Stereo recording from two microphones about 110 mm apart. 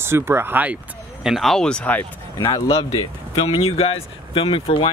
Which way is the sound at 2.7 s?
55° left (ahead or behind).